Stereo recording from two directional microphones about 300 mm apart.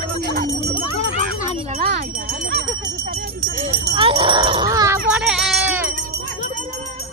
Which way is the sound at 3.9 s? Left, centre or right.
Centre.